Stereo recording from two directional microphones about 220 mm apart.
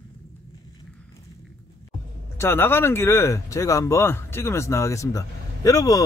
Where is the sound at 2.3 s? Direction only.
10° left (ahead or behind).